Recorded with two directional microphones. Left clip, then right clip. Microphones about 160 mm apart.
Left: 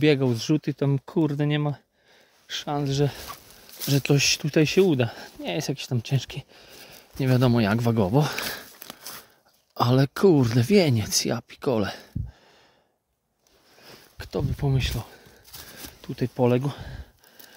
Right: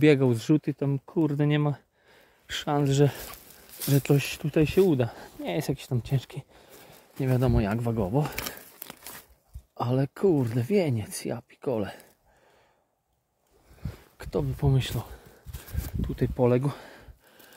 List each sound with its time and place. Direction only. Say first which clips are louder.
0.0 s speech: even; 5° left (ahead or behind)
0.7 s speech: left 3 dB; 40° left (ahead or behind)
1.4 s speech: even; 5° left (ahead or behind)
2.4 s speech: right 1 dB; 10° right (ahead or behind)
3.9 s speech: left 4 dB; 20° left (ahead or behind)
7.2 s speech: left 4 dB; 35° left (ahead or behind)
9.8 s speech: left 6 dB; 45° left (ahead or behind)
13.8 s speech: left 2 dB; 10° left (ahead or behind)